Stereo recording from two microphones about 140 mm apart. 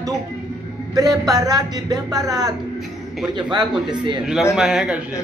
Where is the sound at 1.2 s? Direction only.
30° right (ahead or behind).